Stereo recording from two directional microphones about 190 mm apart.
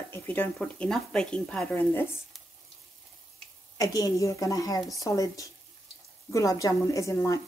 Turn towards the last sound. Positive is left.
turn(degrees=15)  # may be behind; listen again after turning